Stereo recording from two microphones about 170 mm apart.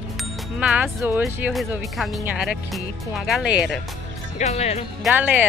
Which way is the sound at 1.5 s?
Centre (ahead or behind).